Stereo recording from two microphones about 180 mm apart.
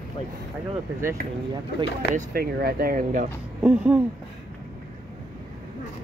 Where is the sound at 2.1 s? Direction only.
55° right (ahead or behind).